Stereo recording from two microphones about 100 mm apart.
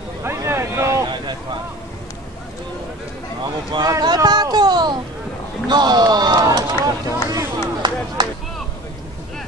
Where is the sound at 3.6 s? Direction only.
40° right (ahead or behind).